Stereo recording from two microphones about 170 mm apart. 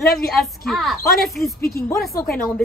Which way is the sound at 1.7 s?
15° left (ahead or behind).